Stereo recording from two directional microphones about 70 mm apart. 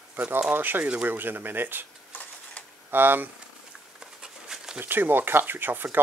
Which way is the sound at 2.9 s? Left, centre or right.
Right.